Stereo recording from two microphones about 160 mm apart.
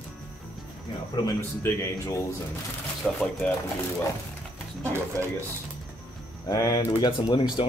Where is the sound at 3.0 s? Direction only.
5° left (ahead or behind).